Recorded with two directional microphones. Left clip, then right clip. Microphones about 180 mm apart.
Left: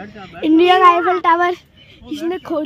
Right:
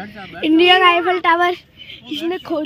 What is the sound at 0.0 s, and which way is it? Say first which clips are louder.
Speech: right 2 dB; 55° right (ahead or behind).